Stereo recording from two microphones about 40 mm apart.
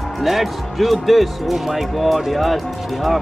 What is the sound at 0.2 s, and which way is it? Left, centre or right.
Speech, centre.